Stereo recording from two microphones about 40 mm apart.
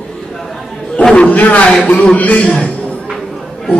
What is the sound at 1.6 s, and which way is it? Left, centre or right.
Speech, left.